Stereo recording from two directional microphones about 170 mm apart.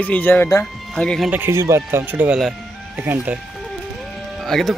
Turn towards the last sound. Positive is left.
turn(degrees=0)  # may be behind; listen again after turning